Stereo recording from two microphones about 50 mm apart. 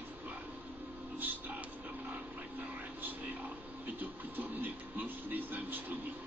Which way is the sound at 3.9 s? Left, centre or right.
Right.